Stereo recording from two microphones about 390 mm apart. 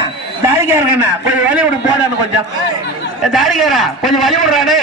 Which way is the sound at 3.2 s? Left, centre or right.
Centre.